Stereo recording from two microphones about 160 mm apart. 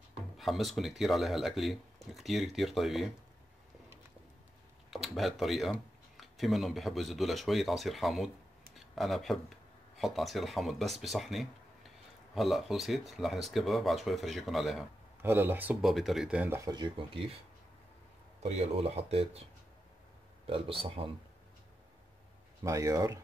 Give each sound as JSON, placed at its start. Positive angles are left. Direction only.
{"t": 0.4, "sound": "speech", "side_deg": 0}
{"t": 4.9, "sound": "speech", "side_deg": 0}
{"t": 15.2, "sound": "speech", "side_deg": -15}
{"t": 16.6, "sound": "speech", "side_deg": -30}
{"t": 18.4, "sound": "speech", "side_deg": -40}
{"t": 20.4, "sound": "speech", "side_deg": -35}
{"t": 22.6, "sound": "speech", "side_deg": -20}